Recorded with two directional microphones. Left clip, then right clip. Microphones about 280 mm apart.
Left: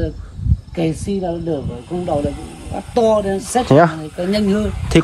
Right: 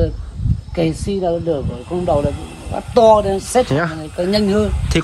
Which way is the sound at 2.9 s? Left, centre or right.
Centre.